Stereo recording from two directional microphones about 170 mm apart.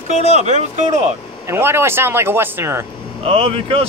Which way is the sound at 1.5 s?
15° right (ahead or behind).